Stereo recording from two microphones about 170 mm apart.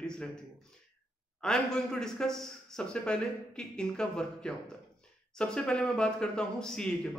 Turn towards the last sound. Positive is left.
turn(degrees=5)  # may be behind; listen again after turning